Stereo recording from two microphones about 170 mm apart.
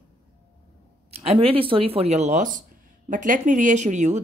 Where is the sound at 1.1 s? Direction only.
35° right (ahead or behind).